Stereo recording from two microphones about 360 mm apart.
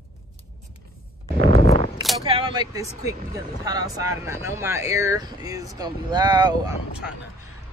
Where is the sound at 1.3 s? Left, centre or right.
Centre.